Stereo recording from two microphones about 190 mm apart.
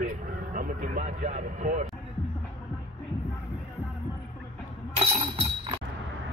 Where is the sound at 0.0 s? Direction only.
45° right (ahead or behind).